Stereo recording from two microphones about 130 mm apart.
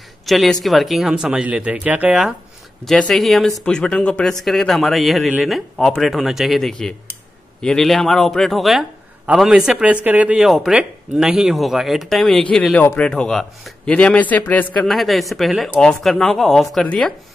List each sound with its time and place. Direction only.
0.3 s speech: centre (ahead or behind)
2.8 s a man's voice: 5° left (ahead or behind)